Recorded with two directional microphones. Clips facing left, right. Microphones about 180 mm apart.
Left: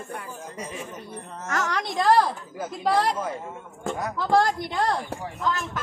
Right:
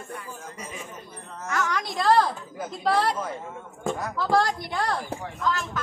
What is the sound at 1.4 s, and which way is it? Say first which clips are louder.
Speech: even; 40° left (ahead or behind).